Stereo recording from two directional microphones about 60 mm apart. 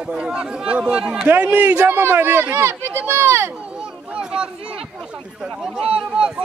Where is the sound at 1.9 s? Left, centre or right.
Right.